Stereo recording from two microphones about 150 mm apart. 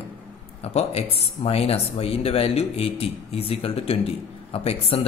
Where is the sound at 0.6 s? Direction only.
45° left (ahead or behind).